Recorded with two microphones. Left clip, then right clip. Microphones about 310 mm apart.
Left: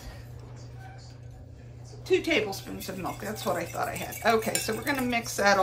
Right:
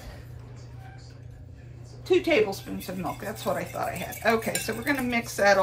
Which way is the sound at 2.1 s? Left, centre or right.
Centre.